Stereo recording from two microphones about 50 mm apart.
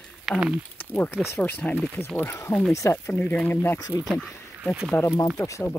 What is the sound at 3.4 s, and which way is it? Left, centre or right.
Speech, left.